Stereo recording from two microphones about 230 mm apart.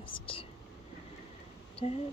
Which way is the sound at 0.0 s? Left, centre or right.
Left.